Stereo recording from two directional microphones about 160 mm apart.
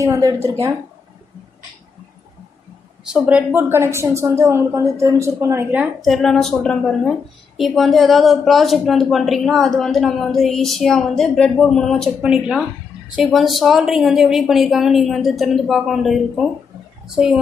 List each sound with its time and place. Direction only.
0.0 s a woman's voice: 20° right (ahead or behind)
3.1 s a woman's voice: 10° right (ahead or behind)
5.9 s a woman's voice: centre (ahead or behind)